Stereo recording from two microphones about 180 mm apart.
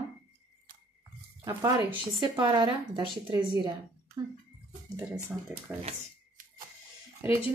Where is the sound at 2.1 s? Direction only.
25° right (ahead or behind).